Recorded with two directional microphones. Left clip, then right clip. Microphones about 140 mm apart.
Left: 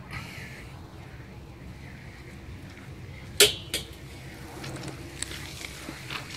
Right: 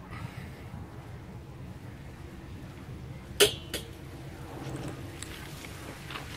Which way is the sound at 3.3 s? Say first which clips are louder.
Left 3 dB; 70° left (ahead or behind).